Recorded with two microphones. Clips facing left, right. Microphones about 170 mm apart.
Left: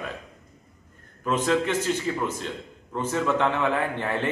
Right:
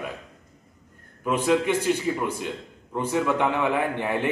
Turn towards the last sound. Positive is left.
turn(degrees=-15)  # may be behind; listen again after turning